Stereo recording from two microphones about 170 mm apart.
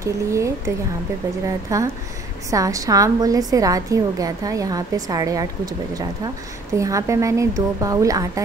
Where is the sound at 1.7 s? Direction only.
20° right (ahead or behind).